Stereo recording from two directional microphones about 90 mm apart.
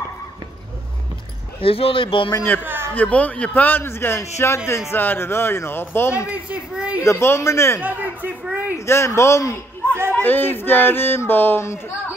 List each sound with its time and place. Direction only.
1.6 s speech: 90° left; by 2.3 s 75° left (ahead or behind)
2.6 s a sound: 25° right (ahead or behind)
3.0 s speech: 15° left (ahead or behind)
6.3 s a child's voice: 15° right (ahead or behind)
7.0 s a man's voice: 30° left (ahead or behind)
7.8 s a sound: 20° right (ahead or behind)
8.7 s a man's voice: 30° left (ahead or behind)
10.1 s speech: 20° left (ahead or behind)